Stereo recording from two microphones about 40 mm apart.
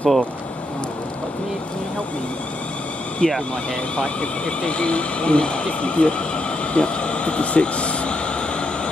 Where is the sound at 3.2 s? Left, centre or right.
Left.